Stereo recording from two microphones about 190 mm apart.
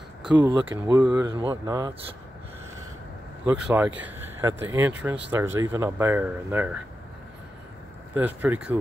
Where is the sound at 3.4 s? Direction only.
5° right (ahead or behind).